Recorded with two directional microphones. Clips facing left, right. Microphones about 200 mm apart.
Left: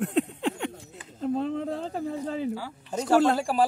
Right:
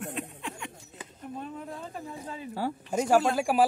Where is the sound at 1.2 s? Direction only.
85° left.